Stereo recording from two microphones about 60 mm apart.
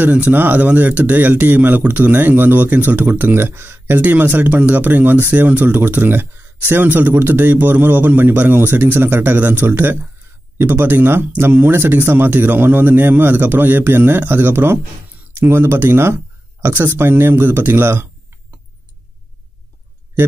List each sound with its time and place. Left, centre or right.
0.0 s speech: right